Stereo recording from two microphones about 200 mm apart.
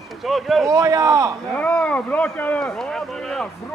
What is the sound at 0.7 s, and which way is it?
Speech, 15° right (ahead or behind).